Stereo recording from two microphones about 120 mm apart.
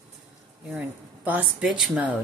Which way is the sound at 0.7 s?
10° right (ahead or behind).